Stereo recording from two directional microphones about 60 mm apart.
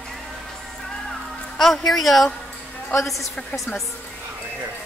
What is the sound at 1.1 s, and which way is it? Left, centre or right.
Music, centre.